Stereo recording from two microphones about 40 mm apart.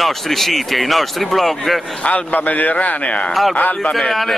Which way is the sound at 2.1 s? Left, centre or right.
Left.